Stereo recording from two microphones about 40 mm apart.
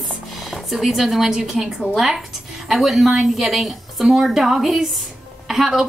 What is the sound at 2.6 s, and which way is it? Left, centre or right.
A woman's voice, centre.